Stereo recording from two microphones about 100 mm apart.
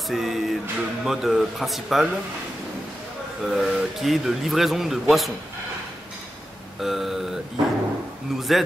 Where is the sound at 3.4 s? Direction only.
Centre (ahead or behind).